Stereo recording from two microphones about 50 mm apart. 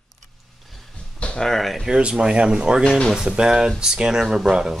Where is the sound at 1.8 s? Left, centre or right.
Centre.